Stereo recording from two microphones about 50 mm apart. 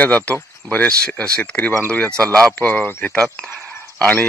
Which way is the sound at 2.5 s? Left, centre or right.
Left.